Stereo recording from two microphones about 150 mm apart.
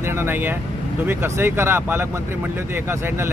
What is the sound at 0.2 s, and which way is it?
Speech, 15° right (ahead or behind).